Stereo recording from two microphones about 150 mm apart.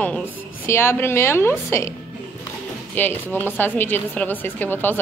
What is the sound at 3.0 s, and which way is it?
Speech, 15° left (ahead or behind).